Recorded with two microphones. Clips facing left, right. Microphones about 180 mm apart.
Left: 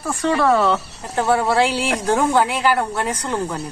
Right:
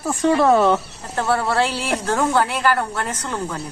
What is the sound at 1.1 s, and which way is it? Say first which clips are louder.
Speech: left 3 dB; 15° left (ahead or behind).